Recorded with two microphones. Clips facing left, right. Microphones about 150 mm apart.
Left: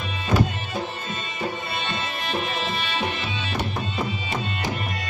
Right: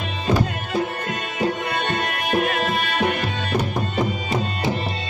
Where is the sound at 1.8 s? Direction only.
50° right (ahead or behind).